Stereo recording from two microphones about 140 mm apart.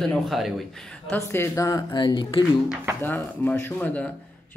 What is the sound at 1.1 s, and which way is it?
A woman's voice, 15° left (ahead or behind).